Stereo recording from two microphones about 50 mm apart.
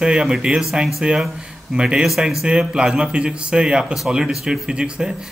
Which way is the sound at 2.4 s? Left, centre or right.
Centre.